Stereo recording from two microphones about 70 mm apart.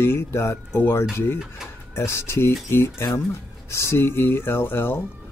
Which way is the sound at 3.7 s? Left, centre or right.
Left.